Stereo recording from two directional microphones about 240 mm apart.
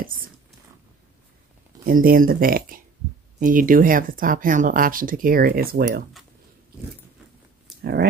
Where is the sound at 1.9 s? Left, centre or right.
Right.